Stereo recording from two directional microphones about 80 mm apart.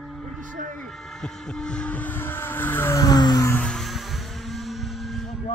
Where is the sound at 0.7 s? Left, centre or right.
Centre; by 3.0 s left.